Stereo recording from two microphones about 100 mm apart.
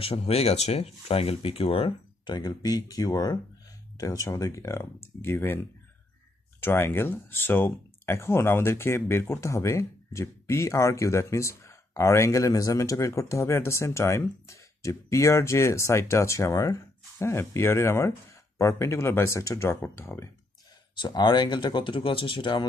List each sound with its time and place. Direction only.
0.0 s speech: 85° left
2.2 s speech: 40° left (ahead or behind); by 5.6 s 25° left (ahead or behind)
6.6 s speech: 25° left (ahead or behind)
21.0 s speech: 45° left (ahead or behind)